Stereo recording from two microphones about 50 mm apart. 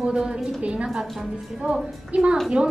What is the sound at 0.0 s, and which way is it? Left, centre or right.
Speech, right.